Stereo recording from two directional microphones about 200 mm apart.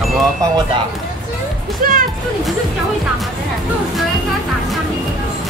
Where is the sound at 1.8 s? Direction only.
45° right (ahead or behind).